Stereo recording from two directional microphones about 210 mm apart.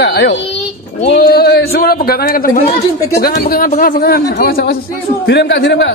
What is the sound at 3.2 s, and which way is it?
A man's voice, 45° left (ahead or behind).